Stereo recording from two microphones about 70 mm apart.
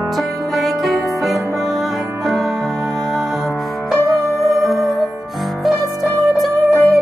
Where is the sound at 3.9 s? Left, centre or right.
Centre.